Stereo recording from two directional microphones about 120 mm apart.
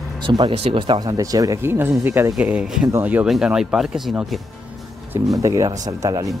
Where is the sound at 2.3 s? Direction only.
10° right (ahead or behind).